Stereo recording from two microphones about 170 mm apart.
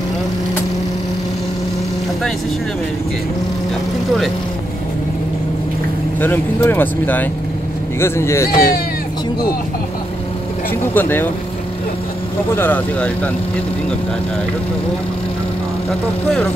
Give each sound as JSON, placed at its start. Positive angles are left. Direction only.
{"t": 6.2, "sound": "speech", "side_deg": 10}
{"t": 11.0, "sound": "speech", "side_deg": 10}
{"t": 12.5, "sound": "speech", "side_deg": 10}